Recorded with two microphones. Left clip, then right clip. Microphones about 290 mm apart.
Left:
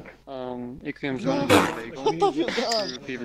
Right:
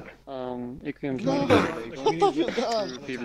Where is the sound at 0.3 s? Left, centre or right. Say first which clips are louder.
Even; centre.